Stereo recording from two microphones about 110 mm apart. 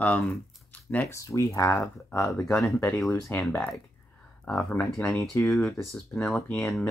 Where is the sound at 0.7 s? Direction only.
15° left (ahead or behind).